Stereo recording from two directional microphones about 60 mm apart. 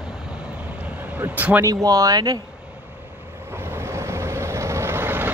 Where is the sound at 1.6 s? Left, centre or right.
Right.